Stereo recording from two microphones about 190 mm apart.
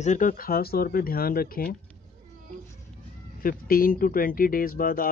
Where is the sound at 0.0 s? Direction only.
40° left (ahead or behind).